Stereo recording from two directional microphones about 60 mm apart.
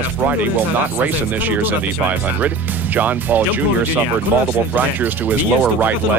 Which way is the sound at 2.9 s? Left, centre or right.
Right.